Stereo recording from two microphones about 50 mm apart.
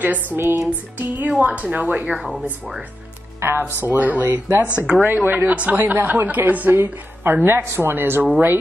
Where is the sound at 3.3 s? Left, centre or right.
Right.